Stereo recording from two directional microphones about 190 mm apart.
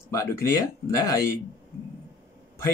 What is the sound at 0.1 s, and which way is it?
Speech, 15° left (ahead or behind).